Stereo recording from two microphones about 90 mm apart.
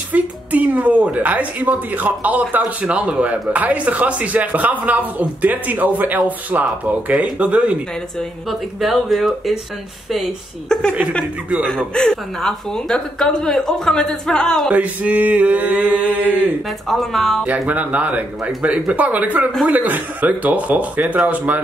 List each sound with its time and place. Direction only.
0.1 s a woman's voice: 15° right (ahead or behind)
8.2 s speech: centre (ahead or behind)
10.7 s a woman's voice: 10° left (ahead or behind)
14.7 s a woman's voice: 15° right (ahead or behind)
16.8 s speech: centre (ahead or behind)
17.5 s a woman's voice: 15° right (ahead or behind)